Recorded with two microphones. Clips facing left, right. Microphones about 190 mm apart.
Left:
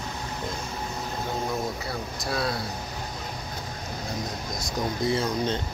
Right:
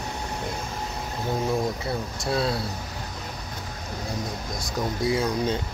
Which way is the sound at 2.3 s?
25° right (ahead or behind).